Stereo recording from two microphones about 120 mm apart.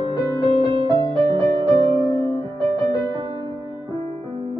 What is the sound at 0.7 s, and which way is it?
Music, 35° right (ahead or behind).